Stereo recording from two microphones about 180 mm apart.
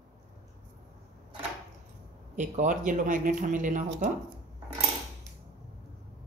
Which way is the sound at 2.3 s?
45° right (ahead or behind).